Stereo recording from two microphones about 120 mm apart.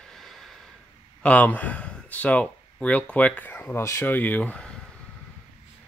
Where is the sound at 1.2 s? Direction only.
10° left (ahead or behind).